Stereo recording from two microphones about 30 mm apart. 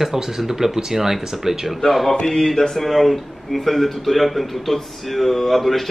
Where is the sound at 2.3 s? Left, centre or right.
Centre.